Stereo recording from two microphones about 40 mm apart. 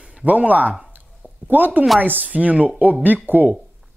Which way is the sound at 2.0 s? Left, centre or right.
Right.